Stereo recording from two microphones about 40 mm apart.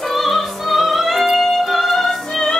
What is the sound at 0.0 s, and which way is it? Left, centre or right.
Music, centre.